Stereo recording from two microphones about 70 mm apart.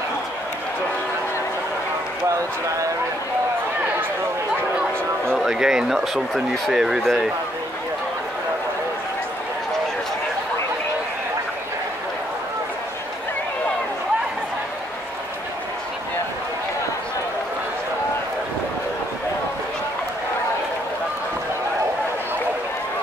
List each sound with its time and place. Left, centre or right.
5.4 s speech: centre
6.7 s speech: centre